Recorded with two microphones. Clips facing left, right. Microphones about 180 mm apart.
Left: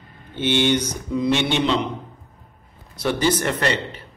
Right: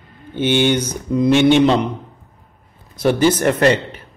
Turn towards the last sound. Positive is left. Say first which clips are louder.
# right 7 dB
turn(degrees=-50)  # may be behind; listen again after turning